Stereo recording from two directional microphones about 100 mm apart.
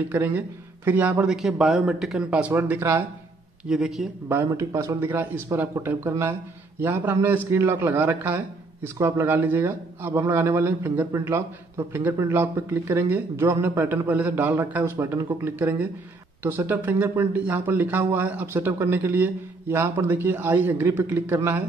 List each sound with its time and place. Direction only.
0.1 s speech: 20° right (ahead or behind)
1.2 s a man's voice: 5° right (ahead or behind)
3.6 s a man's voice: 5° right (ahead or behind)
4.5 s speech: 30° right (ahead or behind)